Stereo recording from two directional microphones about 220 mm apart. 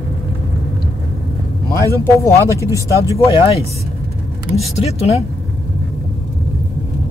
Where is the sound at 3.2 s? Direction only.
25° left (ahead or behind).